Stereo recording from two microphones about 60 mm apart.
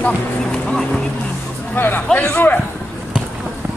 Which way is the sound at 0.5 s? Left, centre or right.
Centre.